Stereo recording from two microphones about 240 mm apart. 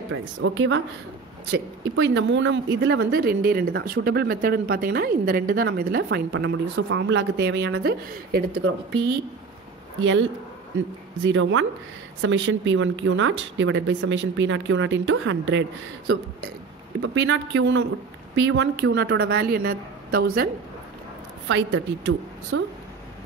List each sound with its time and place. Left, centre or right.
0.1 s speech: right
8.5 s speech: right
11.2 s speech: right
17.0 s a woman's voice: right
21.5 s speech: right